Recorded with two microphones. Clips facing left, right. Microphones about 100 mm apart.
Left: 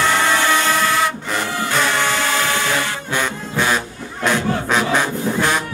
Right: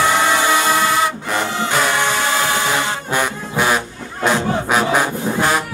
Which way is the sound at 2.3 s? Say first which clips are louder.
Right 1 dB; 20° right (ahead or behind).